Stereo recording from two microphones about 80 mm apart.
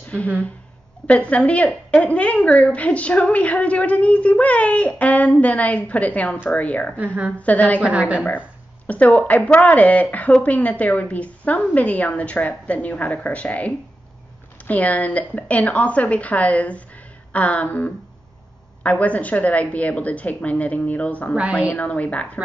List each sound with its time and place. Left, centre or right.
1.0 s a woman's voice: centre
7.8 s a woman's voice: centre
8.8 s a woman's voice: centre